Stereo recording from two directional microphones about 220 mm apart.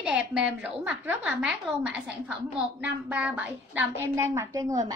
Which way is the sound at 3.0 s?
5° right (ahead or behind).